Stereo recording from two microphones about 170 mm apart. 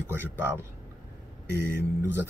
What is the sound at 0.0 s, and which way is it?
Speech, 15° right (ahead or behind).